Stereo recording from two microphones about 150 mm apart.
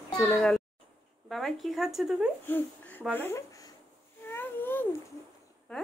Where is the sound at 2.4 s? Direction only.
10° left (ahead or behind).